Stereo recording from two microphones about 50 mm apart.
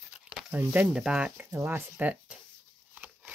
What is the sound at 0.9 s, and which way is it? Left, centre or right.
Speech, centre.